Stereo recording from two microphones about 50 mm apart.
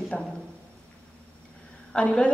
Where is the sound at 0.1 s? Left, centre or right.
Centre.